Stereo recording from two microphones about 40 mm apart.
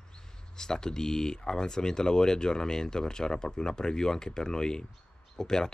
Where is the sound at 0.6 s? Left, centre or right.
Centre.